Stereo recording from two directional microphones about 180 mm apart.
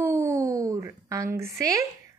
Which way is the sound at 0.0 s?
15° right (ahead or behind).